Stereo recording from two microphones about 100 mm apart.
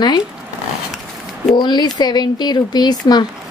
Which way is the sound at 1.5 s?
50° left (ahead or behind).